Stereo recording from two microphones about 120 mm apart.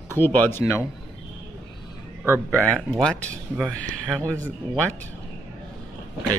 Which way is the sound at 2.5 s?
10° left (ahead or behind).